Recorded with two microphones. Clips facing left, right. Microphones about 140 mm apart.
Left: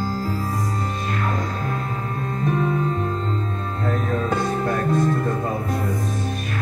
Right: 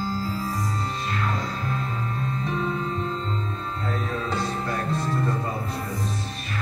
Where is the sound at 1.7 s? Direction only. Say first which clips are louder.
Left 2 dB; 50° left (ahead or behind).